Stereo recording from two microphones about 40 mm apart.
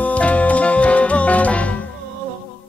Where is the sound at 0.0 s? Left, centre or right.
Left.